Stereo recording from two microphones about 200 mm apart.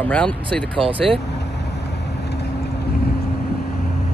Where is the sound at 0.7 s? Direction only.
25° right (ahead or behind).